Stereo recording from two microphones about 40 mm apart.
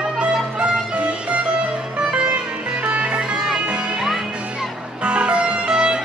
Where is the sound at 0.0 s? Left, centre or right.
Right.